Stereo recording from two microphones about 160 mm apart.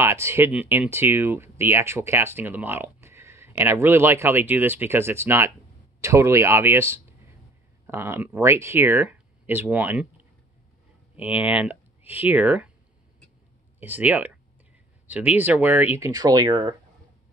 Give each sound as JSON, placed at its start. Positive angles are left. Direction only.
{"t": 0.0, "sound": "speech", "side_deg": -15}
{"t": 11.1, "sound": "speech", "side_deg": -10}
{"t": 13.7, "sound": "speech", "side_deg": -10}